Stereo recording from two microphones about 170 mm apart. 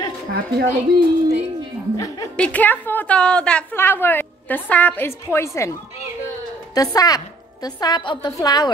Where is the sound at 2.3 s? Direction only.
10° left (ahead or behind).